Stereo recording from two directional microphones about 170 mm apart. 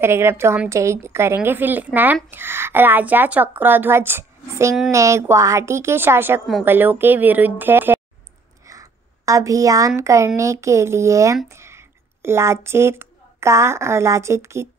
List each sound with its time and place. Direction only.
0.0 s a woman's voice: 15° right (ahead or behind)